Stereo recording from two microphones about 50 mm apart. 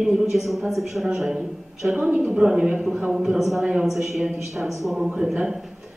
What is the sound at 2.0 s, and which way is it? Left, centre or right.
Speech, right.